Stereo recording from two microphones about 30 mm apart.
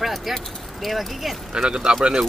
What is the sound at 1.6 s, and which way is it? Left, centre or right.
Speech, right.